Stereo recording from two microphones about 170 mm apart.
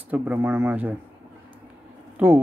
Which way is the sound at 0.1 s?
10° right (ahead or behind).